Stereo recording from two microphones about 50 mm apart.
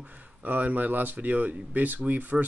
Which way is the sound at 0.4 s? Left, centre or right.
Right.